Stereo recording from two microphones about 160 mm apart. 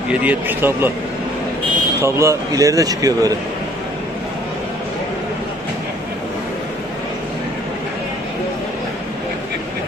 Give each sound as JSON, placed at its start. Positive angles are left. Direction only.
{"t": 0.1, "sound": "a man's voice", "side_deg": -10}
{"t": 2.0, "sound": "speech", "side_deg": -15}